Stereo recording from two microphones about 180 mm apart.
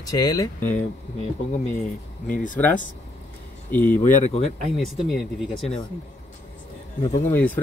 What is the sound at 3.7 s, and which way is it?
Speech, 10° left (ahead or behind).